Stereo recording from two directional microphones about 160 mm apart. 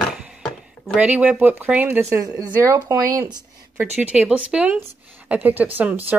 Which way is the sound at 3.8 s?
10° right (ahead or behind).